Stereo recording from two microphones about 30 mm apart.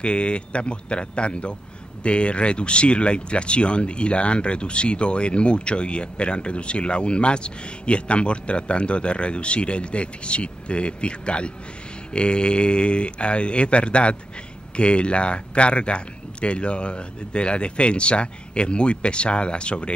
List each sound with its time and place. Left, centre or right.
0.0 s speech: left